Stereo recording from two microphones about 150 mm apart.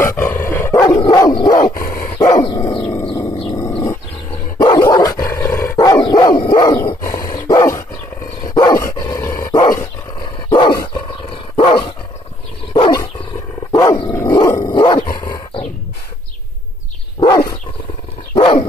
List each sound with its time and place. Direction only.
0.0 s dog: 15° left (ahead or behind)
2.8 s dog: 15° left (ahead or behind)
3.1 s a sound: 25° left (ahead or behind)
3.4 s dog: 20° left (ahead or behind)
18.3 s dog: 35° left (ahead or behind)